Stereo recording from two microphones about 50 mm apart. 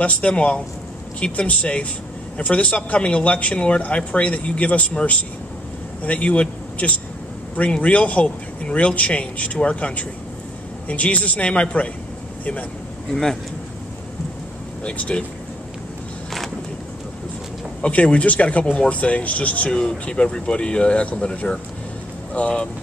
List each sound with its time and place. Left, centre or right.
0.0 s speech: left
13.1 s speech: centre
14.9 s speech: left
17.8 s speech: left